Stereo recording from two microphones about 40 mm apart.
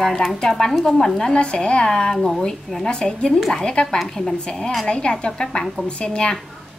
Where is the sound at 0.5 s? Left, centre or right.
Centre.